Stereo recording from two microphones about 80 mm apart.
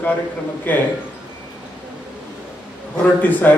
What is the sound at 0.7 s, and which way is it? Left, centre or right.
Speech, left.